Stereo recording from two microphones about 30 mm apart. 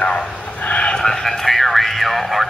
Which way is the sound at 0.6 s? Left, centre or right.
Left.